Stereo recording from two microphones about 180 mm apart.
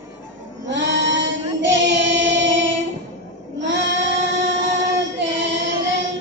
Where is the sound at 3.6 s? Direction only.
85° right.